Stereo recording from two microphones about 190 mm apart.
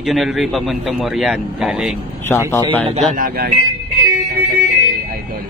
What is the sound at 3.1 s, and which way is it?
Speech, 50° right (ahead or behind).